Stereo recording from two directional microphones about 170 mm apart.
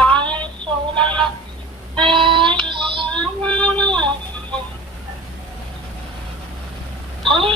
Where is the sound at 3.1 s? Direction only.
5° left (ahead or behind).